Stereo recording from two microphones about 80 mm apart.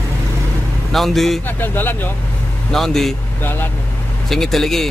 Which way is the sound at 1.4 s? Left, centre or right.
Left.